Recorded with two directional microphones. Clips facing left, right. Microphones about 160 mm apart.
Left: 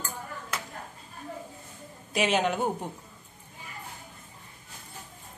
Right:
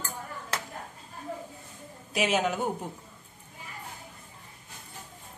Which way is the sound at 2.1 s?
5° right (ahead or behind).